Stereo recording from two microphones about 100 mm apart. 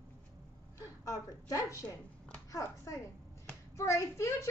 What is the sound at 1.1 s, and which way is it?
Speech, 35° left (ahead or behind).